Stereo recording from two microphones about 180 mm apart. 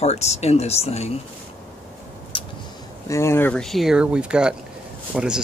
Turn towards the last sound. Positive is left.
turn(degrees=-5)  # may be behind; listen again after turning